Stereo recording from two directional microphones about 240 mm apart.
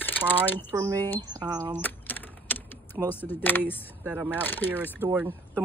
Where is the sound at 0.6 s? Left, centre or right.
Centre.